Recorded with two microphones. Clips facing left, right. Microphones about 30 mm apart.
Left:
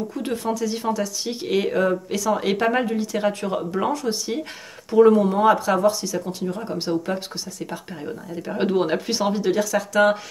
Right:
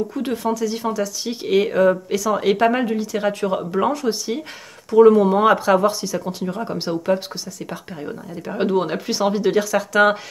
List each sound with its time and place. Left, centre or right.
0.1 s speech: centre
5.2 s speech: right